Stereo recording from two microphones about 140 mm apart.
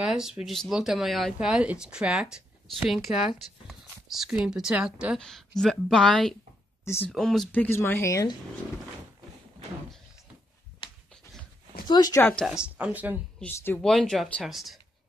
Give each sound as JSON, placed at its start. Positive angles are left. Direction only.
{"t": 0.0, "sound": "speech", "side_deg": -5}
{"t": 6.8, "sound": "a sound", "side_deg": 20}
{"t": 7.1, "sound": "speech", "side_deg": 0}
{"t": 10.8, "sound": "a sound", "side_deg": 40}
{"t": 11.9, "sound": "speech", "side_deg": 25}
{"t": 12.2, "sound": "speech", "side_deg": 15}
{"t": 12.6, "sound": "speech", "side_deg": -10}
{"t": 13.4, "sound": "speech", "side_deg": 5}